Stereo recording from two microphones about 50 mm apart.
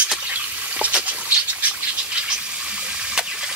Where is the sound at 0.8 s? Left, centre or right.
Right.